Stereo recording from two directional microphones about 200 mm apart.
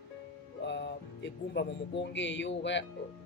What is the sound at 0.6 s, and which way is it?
Speech, 60° left (ahead or behind).